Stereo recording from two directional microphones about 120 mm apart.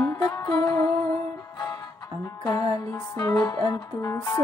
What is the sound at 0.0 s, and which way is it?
Music, 35° left (ahead or behind).